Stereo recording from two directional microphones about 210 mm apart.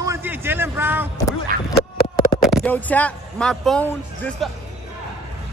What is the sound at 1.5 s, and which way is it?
Speech, 45° right (ahead or behind).